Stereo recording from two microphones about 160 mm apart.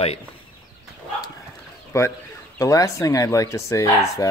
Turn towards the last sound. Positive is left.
turn(degrees=20)  # may be behind; listen again after turning